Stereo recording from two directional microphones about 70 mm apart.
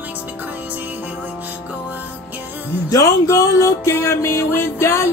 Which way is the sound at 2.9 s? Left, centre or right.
Left.